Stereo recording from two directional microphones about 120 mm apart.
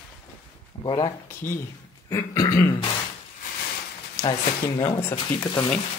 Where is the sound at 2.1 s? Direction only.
25° left (ahead or behind).